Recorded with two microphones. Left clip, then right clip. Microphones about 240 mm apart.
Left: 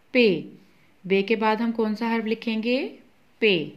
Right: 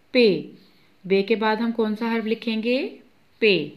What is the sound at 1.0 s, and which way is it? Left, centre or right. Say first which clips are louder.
A woman's voice: right 1 dB; centre.